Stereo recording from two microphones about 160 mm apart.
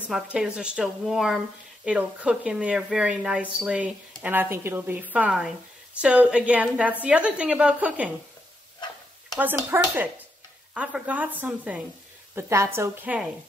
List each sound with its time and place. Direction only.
0.0 s a woman's voice: 5° right (ahead or behind)
9.7 s speech: 15° right (ahead or behind)